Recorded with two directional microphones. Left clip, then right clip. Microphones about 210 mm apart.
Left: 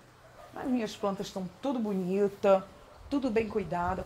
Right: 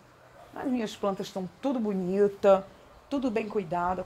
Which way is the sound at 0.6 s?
45° right (ahead or behind).